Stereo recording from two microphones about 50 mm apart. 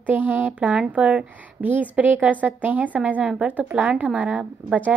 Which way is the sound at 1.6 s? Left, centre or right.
Right.